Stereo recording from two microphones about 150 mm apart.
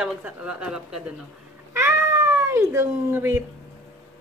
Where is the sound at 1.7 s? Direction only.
15° right (ahead or behind).